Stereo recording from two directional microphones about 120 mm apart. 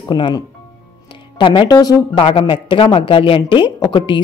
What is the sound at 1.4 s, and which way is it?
Speech, 40° left (ahead or behind).